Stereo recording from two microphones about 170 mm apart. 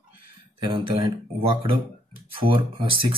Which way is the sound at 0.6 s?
30° right (ahead or behind).